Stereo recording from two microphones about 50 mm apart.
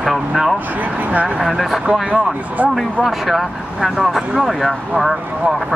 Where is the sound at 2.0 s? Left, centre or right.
Right.